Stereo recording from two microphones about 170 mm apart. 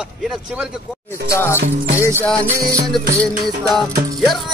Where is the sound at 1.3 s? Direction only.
15° left (ahead or behind).